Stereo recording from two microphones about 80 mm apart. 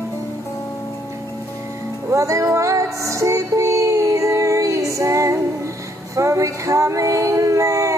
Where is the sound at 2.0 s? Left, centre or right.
Right.